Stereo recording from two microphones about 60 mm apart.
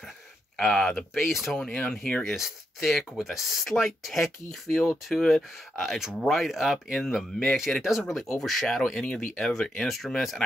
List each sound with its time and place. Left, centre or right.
0.6 s speech: centre
1.6 s speech: centre
2.2 s speech: centre